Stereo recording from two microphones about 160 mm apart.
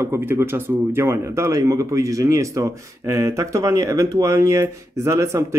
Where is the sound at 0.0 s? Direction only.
15° right (ahead or behind).